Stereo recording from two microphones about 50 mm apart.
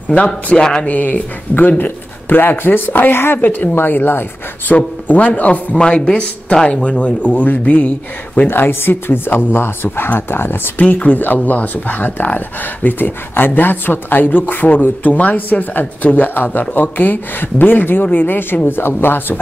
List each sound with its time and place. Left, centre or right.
0.5 s speech: centre
0.8 s speech: left
4.7 s speech: left
8.5 s speech: left
10.8 s speech: left